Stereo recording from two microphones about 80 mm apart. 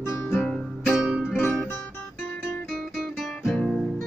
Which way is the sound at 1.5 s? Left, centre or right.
Centre.